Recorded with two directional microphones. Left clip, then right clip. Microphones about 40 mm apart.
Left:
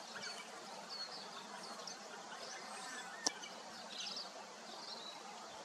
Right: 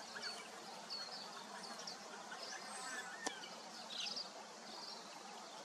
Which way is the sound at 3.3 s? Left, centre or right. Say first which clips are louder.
Left 6 dB; left.